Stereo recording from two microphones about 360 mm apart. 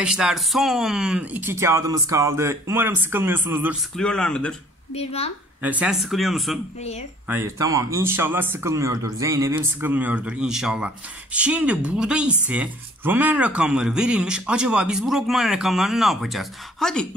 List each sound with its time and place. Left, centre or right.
0.0 s speech: centre
4.9 s a woman's voice: centre
5.6 s speech: centre